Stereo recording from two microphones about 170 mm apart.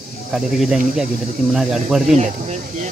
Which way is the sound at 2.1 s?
45° right (ahead or behind).